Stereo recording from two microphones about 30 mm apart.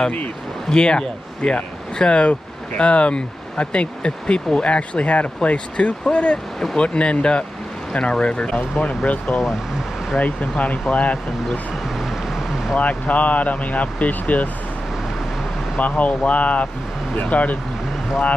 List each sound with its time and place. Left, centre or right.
0.7 s speech: left
8.8 s speech: left
12.0 s vehicle: centre
12.7 s speech: left
15.8 s speech: left